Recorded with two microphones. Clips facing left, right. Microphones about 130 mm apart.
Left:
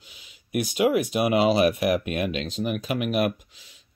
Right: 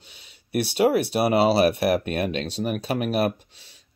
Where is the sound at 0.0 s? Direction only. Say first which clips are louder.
Right 1 dB; 30° right (ahead or behind).